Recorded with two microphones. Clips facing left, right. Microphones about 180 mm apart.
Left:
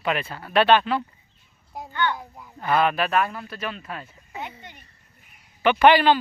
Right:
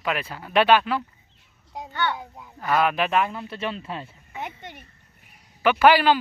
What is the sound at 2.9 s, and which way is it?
Speech, 15° right (ahead or behind).